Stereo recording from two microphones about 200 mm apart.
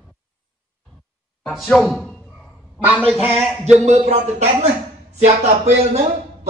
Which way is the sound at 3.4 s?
5° right (ahead or behind).